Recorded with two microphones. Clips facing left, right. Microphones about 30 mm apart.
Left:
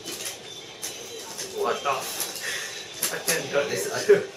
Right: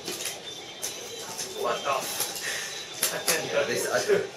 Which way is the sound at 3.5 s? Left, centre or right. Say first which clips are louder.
Right 1 dB; centre.